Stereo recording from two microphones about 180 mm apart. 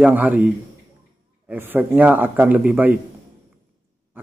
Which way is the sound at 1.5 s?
10° right (ahead or behind).